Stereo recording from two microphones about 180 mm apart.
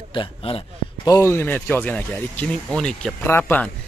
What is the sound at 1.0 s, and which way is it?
Speech, 15° left (ahead or behind).